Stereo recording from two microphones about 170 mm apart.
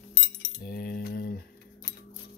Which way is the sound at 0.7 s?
65° left (ahead or behind).